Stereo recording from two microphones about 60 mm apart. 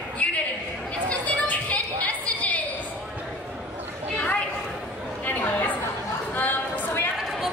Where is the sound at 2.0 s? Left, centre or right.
Left.